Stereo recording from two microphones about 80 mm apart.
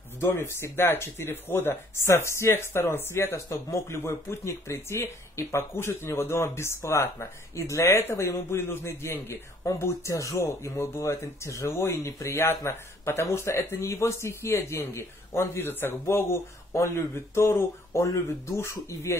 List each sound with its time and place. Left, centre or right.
0.2 s speech: left